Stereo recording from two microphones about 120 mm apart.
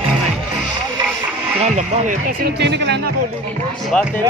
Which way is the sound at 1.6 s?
90° right.